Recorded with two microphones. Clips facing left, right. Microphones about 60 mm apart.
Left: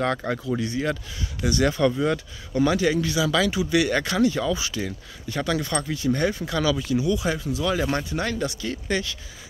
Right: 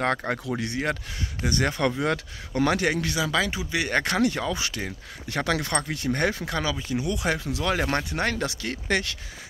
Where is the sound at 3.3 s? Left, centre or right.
Right.